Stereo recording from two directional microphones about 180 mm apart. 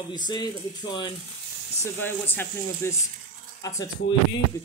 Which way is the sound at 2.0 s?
10° left (ahead or behind).